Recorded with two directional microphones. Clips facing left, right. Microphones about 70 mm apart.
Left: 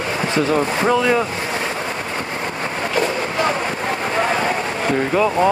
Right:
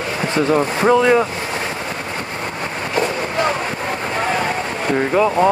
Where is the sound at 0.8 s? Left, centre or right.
Centre.